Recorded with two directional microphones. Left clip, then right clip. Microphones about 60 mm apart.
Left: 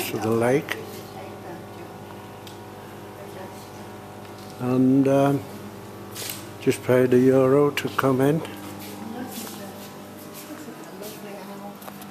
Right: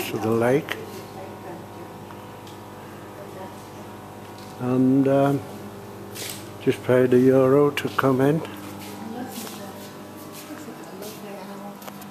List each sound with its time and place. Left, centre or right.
0.0 s speech: centre
4.6 s speech: centre
6.9 s speech: centre